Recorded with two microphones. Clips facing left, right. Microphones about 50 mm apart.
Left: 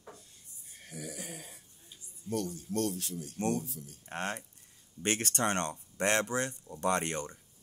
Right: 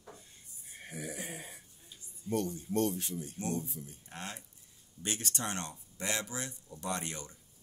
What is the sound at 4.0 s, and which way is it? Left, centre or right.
Speech, left.